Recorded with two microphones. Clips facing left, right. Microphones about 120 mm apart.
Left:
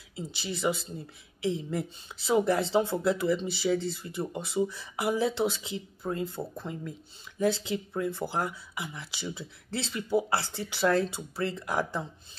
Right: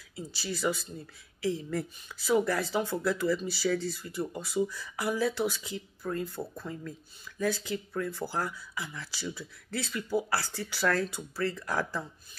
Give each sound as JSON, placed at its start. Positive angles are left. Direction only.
{"t": 0.1, "sound": "speech", "side_deg": 20}